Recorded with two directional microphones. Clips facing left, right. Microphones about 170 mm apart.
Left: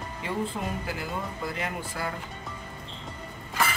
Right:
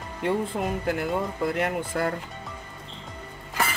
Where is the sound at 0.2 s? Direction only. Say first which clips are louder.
Right 5 dB; 60° right (ahead or behind).